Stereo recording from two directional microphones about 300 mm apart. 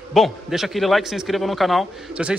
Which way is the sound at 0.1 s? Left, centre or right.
Centre.